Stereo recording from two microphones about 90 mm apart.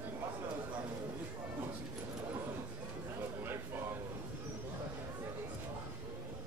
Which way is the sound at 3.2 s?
25° right (ahead or behind).